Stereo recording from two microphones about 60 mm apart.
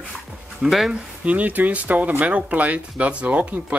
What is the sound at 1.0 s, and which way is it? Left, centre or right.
Speech, right.